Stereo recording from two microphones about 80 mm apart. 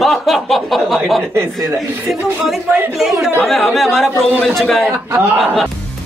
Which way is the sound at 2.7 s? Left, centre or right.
Right.